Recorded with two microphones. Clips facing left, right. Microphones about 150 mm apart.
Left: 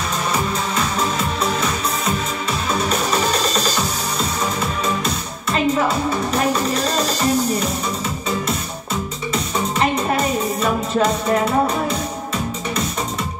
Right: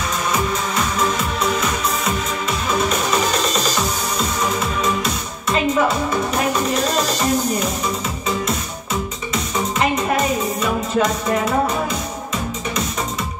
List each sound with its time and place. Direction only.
2.9 s music: 35° left (ahead or behind)
6.7 s music: 35° left (ahead or behind)
9.3 s music: 30° left (ahead or behind)